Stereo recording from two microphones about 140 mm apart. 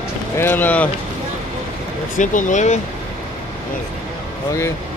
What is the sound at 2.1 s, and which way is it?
Speech, 65° left (ahead or behind).